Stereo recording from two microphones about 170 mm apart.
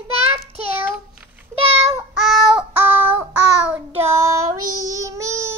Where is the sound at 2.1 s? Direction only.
Centre (ahead or behind).